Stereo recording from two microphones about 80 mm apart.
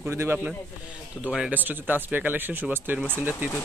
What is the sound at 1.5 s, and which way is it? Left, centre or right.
A man's voice, right.